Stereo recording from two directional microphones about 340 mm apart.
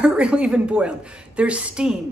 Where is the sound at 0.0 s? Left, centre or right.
Centre.